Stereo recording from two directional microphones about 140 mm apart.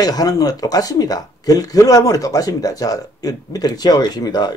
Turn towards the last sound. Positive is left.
turn(degrees=30)  # may be behind; listen again after turning